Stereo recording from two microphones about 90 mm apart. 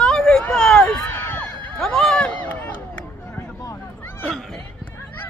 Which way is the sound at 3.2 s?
25° left (ahead or behind).